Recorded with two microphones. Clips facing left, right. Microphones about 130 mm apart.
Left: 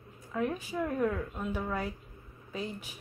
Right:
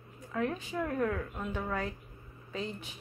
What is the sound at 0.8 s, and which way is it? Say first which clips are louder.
A woman's voice: left 1 dB; centre (ahead or behind).